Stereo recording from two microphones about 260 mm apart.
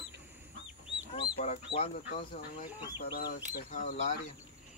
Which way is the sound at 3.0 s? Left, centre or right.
Left.